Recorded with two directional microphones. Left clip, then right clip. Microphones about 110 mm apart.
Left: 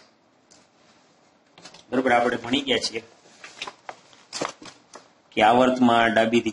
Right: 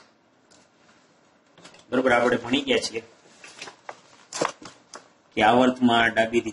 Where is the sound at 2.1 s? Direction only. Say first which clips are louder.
Even; 25° left (ahead or behind).